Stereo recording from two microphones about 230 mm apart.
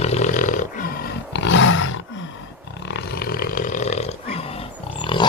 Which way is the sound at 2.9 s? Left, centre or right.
Left.